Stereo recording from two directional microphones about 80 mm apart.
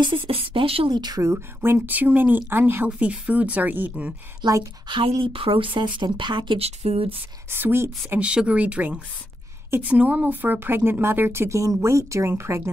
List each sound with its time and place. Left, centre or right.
0.0 s speech: right
1.2 s speech: right
4.4 s a woman's voice: right
5.2 s speech: right
7.4 s speech: right
8.2 s speech: centre; by 12.6 s right